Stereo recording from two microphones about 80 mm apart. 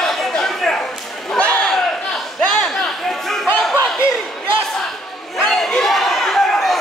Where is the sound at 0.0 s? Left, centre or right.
Centre.